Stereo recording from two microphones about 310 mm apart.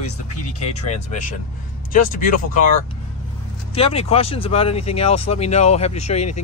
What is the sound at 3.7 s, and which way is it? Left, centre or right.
Speech, centre.